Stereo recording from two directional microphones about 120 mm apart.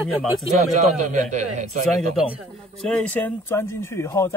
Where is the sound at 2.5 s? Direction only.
10° left (ahead or behind).